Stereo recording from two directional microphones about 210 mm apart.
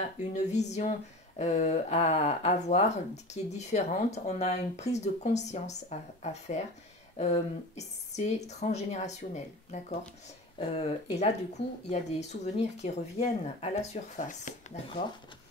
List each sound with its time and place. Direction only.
0.2 s speech: 35° left (ahead or behind)